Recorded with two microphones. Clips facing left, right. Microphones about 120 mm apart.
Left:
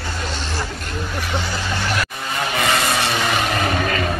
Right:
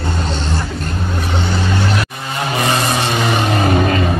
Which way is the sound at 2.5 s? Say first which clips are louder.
Right 3 dB; 25° right (ahead or behind).